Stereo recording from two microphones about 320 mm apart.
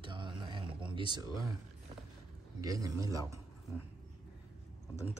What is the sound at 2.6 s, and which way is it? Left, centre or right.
Speech, centre.